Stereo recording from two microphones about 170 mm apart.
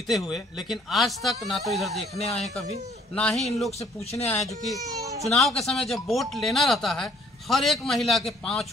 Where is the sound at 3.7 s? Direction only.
35° left (ahead or behind).